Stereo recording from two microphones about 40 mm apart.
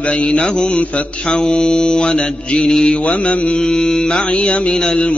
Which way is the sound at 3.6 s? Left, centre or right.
Centre.